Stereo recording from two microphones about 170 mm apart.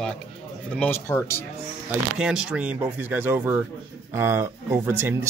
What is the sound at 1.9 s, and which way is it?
Speech, 5° right (ahead or behind).